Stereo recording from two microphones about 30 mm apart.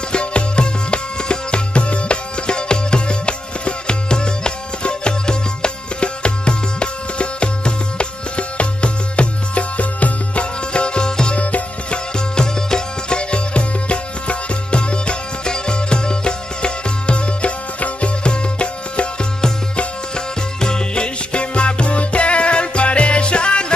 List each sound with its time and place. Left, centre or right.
0.1 s music: left
10.7 s music: left
11.3 s music: left
12.4 s music: left
13.3 s music: left
17.7 s music: left
18.2 s music: left
20.6 s music: left